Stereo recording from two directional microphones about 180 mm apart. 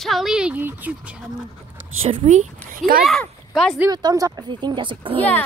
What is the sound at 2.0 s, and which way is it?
Speech, 35° right (ahead or behind).